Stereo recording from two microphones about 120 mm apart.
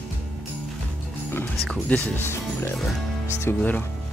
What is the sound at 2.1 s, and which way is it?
Speech, 20° left (ahead or behind).